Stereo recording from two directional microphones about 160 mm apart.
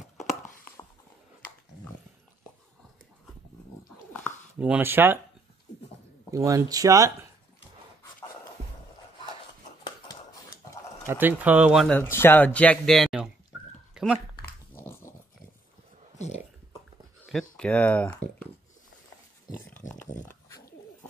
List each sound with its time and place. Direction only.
4.6 s speech: 10° right (ahead or behind)
6.3 s speech: 20° right (ahead or behind)
11.1 s speech: 10° right (ahead or behind)
11.8 s speech: 10° left (ahead or behind)
13.9 s dog: 5° right (ahead or behind)
14.4 s dog: 15° left (ahead or behind)
17.3 s a sound: 5° left (ahead or behind)
19.8 s a sound: 50° left (ahead or behind)
20.2 s dog: 20° left (ahead or behind)